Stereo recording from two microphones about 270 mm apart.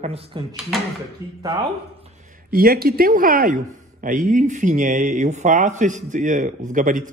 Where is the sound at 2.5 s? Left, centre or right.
Right.